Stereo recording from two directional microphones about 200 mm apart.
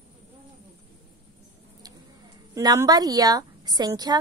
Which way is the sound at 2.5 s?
15° right (ahead or behind).